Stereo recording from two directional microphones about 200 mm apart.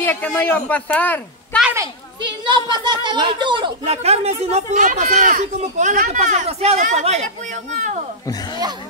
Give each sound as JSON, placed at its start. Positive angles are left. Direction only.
{"t": 0.0, "sound": "a man's voice", "side_deg": 10}
{"t": 2.4, "sound": "speech", "side_deg": -25}